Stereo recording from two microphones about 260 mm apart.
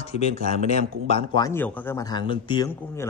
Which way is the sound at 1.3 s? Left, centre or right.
Centre.